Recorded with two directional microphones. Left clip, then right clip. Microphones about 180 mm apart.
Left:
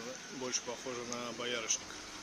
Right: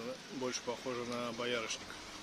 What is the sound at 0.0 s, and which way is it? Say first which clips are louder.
Speech: right 1 dB; 60° right (ahead or behind).